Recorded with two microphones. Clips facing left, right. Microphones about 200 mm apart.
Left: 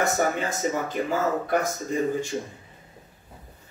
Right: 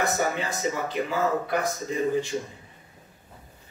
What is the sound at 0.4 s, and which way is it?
Speech, 50° left (ahead or behind).